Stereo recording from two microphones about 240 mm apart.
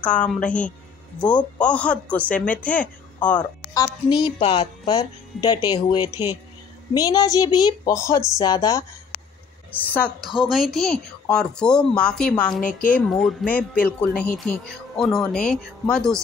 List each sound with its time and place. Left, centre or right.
0.0 s a woman's voice: centre